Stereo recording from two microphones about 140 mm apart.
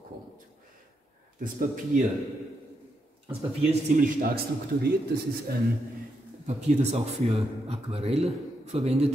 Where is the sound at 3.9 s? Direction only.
90° right.